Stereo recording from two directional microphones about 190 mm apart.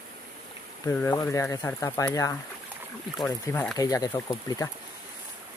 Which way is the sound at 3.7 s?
20° left (ahead or behind).